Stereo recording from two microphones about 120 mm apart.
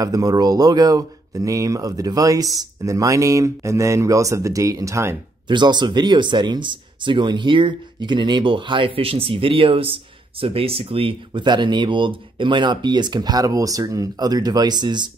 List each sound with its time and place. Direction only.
0.0 s speech: 30° right (ahead or behind)
5.5 s speech: 40° right (ahead or behind)